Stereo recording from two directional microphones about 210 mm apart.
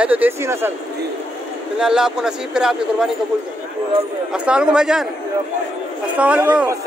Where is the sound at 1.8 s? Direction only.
5° right (ahead or behind).